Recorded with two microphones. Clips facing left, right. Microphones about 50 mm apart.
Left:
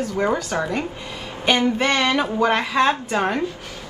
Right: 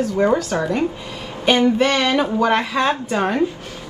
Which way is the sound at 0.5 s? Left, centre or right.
Centre.